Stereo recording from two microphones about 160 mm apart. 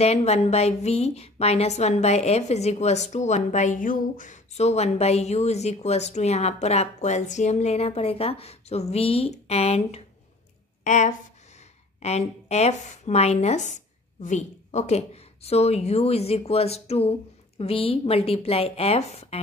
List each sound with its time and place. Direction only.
0.0 s a woman's voice: 40° left (ahead or behind)